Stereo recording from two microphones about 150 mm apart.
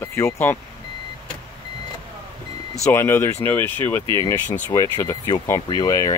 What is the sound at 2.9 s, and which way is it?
Speech, 15° left (ahead or behind).